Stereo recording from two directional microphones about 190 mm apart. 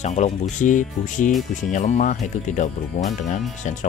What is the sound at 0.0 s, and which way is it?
Speech, 35° left (ahead or behind).